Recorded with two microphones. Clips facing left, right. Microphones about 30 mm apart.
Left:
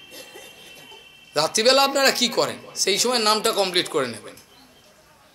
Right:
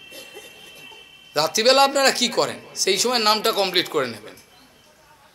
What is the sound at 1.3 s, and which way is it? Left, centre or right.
Speech, centre.